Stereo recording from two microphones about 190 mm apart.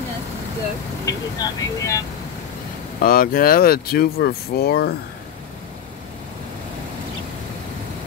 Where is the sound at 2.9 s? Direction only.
50° left (ahead or behind).